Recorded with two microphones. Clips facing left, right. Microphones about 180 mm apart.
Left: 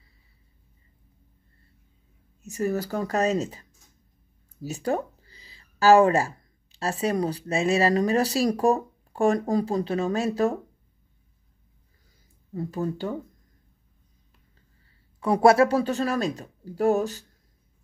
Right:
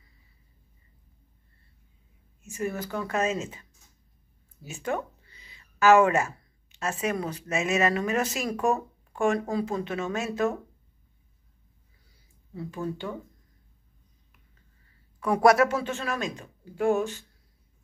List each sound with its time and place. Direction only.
2.4 s speech: 40° left (ahead or behind)
4.6 s speech: 35° left (ahead or behind)
12.5 s speech: 40° left (ahead or behind)
15.1 s speech: 25° left (ahead or behind)